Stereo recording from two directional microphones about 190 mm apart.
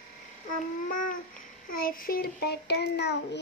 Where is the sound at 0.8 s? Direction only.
45° left (ahead or behind); by 3.2 s 65° left (ahead or behind).